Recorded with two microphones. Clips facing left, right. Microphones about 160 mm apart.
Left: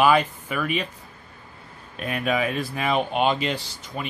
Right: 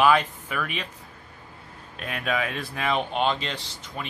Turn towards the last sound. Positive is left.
turn(degrees=5)  # may be behind; listen again after turning